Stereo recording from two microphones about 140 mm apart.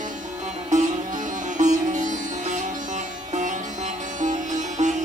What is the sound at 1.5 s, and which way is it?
Sitar, 60° right (ahead or behind).